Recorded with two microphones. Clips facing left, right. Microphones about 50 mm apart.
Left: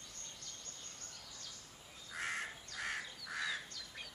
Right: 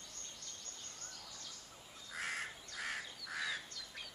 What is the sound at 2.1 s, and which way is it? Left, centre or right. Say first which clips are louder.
Crow: left 1 dB; centre.